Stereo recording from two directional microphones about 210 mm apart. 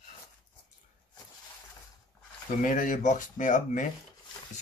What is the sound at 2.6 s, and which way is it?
Speech, 40° left (ahead or behind).